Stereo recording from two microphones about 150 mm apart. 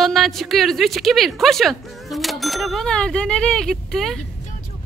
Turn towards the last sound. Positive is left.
turn(degrees=0)  # may be behind; listen again after turning